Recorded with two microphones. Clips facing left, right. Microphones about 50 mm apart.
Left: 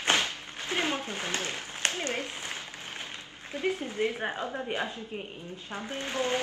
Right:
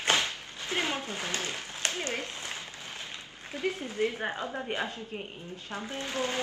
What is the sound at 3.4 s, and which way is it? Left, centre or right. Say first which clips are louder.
Speech: left 2 dB; left.